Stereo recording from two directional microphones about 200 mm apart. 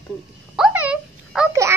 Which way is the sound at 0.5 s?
5° right (ahead or behind).